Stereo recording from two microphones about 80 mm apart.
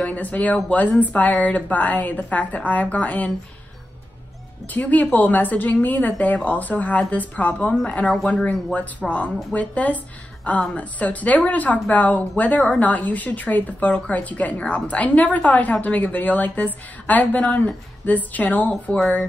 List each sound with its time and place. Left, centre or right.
0.0 s a woman's voice: centre
4.6 s a woman's voice: left
18.9 s speech: centre